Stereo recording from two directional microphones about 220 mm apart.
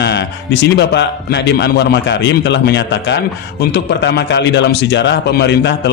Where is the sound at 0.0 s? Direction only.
50° left (ahead or behind).